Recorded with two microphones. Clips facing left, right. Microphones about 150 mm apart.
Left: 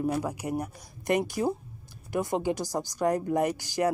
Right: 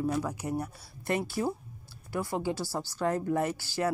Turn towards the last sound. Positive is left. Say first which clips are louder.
# left 3 dB
turn(degrees=15)  # may be behind; listen again after turning